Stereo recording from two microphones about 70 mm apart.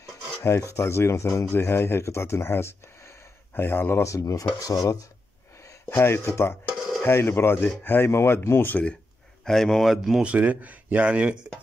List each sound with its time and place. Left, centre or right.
0.4 s filing: left
0.7 s speech: left
5.9 s speech: left
9.4 s speech: centre
10.2 s speech: right